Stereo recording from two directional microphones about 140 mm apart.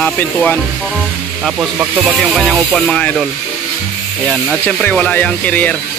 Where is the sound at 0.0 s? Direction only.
10° left (ahead or behind).